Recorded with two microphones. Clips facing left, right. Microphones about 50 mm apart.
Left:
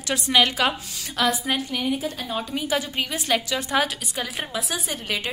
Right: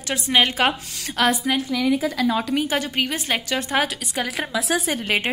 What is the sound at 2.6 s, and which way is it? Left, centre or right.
Speech, right.